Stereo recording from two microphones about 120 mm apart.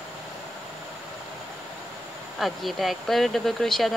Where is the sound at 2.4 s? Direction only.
Centre (ahead or behind).